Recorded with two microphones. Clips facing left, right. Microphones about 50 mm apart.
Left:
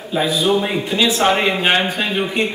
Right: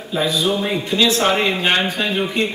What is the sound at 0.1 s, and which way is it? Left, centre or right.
A man's voice, centre.